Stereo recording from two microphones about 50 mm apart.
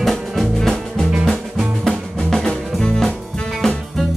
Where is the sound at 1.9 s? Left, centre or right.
Centre.